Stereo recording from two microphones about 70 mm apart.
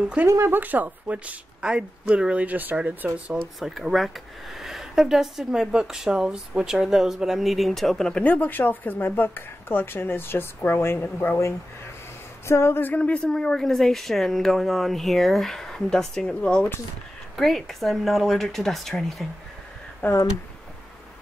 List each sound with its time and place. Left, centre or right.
0.0 s speech: centre
0.3 s speech: right
0.6 s a woman's voice: right
3.5 s speech: centre
8.1 s speech: left
11.3 s a woman's voice: left; by 19.2 s centre
20.0 s speech: left